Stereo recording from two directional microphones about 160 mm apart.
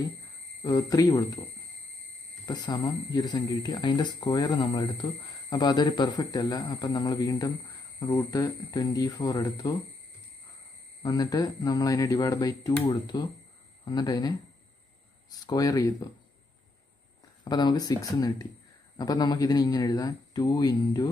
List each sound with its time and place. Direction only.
0.6 s speech: 30° left (ahead or behind)
2.4 s speech: 25° left (ahead or behind)
11.0 s speech: 25° left (ahead or behind)
15.4 s speech: 25° left (ahead or behind)
17.5 s speech: 25° left (ahead or behind)